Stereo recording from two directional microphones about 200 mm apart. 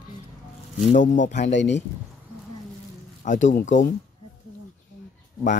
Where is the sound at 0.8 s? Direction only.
40° left (ahead or behind).